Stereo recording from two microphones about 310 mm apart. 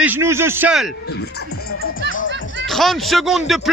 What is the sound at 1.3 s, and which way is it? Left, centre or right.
Music, left.